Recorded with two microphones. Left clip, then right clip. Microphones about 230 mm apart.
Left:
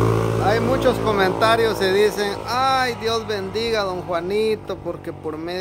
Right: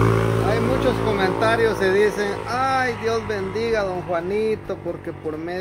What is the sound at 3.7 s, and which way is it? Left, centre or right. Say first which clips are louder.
Speech: even; centre.